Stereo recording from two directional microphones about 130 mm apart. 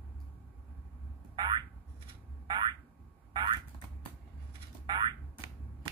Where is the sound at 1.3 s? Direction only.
35° right (ahead or behind).